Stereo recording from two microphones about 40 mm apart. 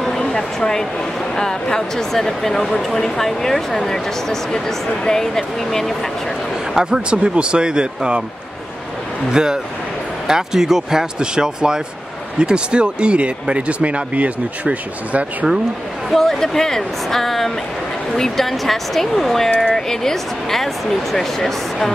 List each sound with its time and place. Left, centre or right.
0.6 s speech: centre
6.7 s speech: centre
9.3 s speech: centre; by 15.2 s right
16.1 s speech: centre